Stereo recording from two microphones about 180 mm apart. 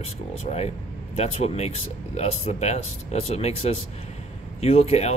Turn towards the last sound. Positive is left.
turn(degrees=35)  # may be behind; listen again after turning